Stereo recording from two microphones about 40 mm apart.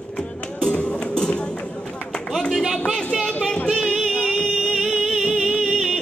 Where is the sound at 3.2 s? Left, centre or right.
Left.